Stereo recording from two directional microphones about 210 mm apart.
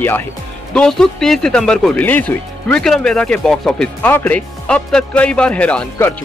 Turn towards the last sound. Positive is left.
turn(degrees=10)  # may be behind; listen again after turning